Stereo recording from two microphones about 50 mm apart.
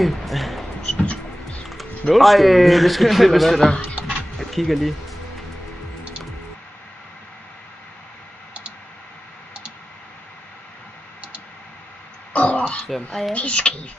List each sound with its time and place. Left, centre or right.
0.0 s speech: centre
1.7 s speech: centre
3.8 s music: right
4.4 s music: centre
12.3 s throat clearing: left
12.9 s speech: centre
13.3 s speech: left